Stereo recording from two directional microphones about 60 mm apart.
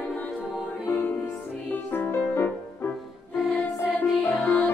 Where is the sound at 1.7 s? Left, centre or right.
Left.